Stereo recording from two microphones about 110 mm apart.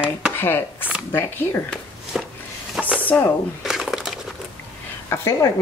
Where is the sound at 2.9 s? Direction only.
15° left (ahead or behind).